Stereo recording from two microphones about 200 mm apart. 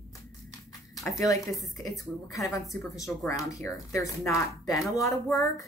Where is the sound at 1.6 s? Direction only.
15° left (ahead or behind).